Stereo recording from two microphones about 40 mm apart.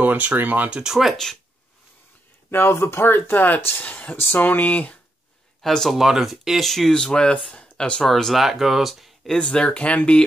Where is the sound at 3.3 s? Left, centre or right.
Left.